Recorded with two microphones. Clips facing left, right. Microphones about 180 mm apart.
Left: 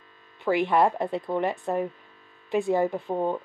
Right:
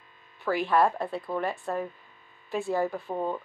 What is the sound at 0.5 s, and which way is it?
Speech, 20° left (ahead or behind).